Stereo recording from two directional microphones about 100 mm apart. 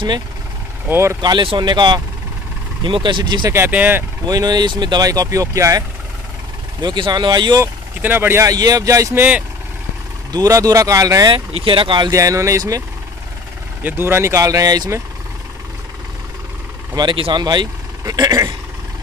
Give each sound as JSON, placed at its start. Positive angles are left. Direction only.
{"t": 0.8, "sound": "speech", "side_deg": -25}
{"t": 1.2, "sound": "speech", "side_deg": -50}
{"t": 3.4, "sound": "speech", "side_deg": -25}
{"t": 4.3, "sound": "speech", "side_deg": -40}
{"t": 6.8, "sound": "speech", "side_deg": -45}
{"t": 8.0, "sound": "speech", "side_deg": -20}
{"t": 8.5, "sound": "speech", "side_deg": -40}
{"t": 9.1, "sound": "speech", "side_deg": -20}
{"t": 10.3, "sound": "speech", "side_deg": -35}
{"t": 11.3, "sound": "speech", "side_deg": -60}
{"t": 12.1, "sound": "speech", "side_deg": -35}
{"t": 13.8, "sound": "speech", "side_deg": -20}
{"t": 16.9, "sound": "speech", "side_deg": -55}